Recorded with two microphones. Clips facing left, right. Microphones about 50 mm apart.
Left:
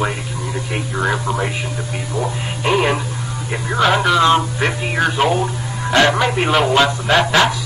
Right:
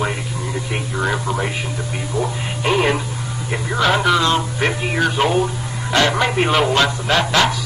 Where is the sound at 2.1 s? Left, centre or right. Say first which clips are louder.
Even; centre.